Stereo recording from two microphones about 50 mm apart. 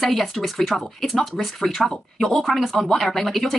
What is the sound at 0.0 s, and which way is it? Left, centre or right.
A woman's voice, centre.